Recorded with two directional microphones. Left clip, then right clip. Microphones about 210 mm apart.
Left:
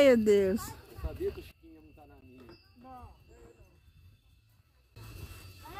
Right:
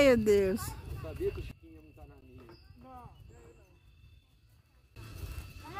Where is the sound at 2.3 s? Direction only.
50° left (ahead or behind).